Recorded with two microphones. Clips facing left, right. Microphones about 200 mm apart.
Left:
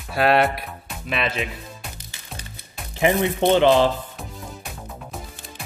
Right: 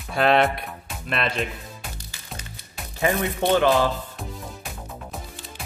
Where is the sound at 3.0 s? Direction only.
20° left (ahead or behind).